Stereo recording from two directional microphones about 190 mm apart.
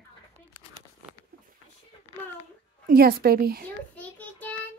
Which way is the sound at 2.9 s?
50° right (ahead or behind).